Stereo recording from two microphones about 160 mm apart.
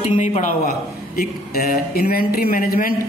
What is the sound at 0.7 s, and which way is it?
Speech, 70° left (ahead or behind).